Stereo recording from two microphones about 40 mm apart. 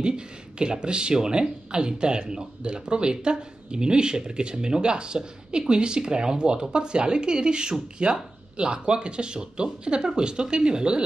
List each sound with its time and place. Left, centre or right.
0.0 s speech: right